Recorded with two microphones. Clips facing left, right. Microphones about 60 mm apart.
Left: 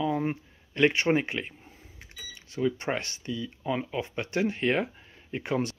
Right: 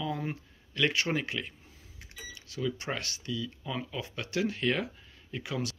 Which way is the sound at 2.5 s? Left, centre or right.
Left.